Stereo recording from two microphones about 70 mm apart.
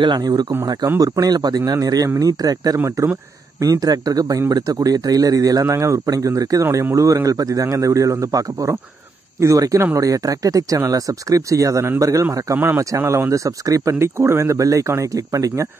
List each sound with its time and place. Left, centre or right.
0.1 s speech: right
0.9 s speech: right
6.6 s a man's voice: right
13.9 s a man's voice: right